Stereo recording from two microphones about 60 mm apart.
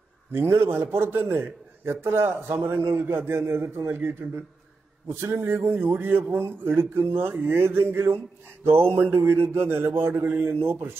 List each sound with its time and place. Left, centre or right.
0.3 s a man's voice: right
5.2 s a man's voice: right
5.6 s a man's voice: right